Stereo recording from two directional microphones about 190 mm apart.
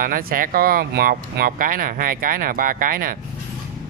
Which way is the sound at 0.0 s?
45° right (ahead or behind).